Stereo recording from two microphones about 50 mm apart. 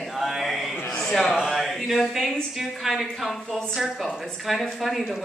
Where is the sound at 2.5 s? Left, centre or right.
Centre.